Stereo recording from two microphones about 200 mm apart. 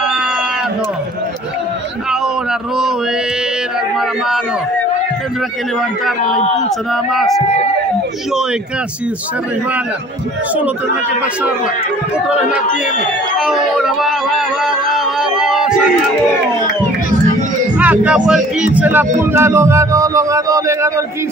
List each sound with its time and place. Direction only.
6.9 s speech: centre (ahead or behind)
12.3 s speech: 5° right (ahead or behind)
13.4 s a sound: 5° right (ahead or behind)
17.7 s speech: 5° right (ahead or behind)